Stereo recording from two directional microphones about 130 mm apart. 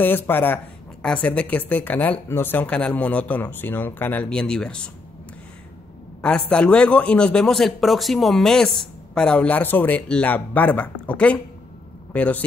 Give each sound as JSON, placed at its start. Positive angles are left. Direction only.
{"t": 0.0, "sound": "a man's voice", "side_deg": 15}
{"t": 6.2, "sound": "a man's voice", "side_deg": 10}